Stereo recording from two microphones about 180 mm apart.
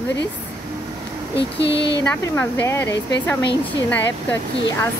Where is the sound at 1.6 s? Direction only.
75° left (ahead or behind).